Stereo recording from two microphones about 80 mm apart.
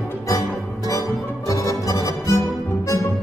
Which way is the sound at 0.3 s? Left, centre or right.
Left.